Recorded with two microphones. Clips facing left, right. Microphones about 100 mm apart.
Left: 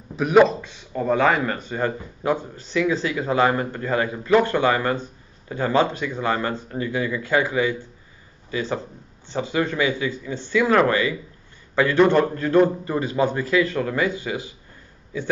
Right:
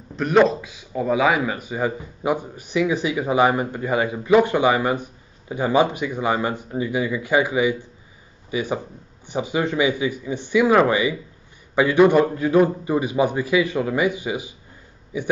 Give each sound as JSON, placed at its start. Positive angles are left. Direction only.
{"t": 0.1, "sound": "a man's voice", "side_deg": 5}